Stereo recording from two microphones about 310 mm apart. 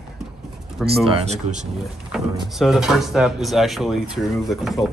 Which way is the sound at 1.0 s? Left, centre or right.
Right.